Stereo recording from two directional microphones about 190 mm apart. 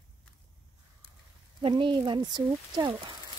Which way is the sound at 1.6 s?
25° right (ahead or behind).